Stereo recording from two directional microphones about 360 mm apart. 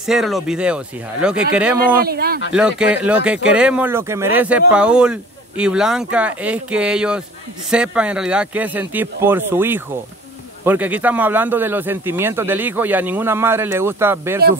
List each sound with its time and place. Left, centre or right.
0.0 s speech: centre
2.0 s speech: right
2.5 s speech: centre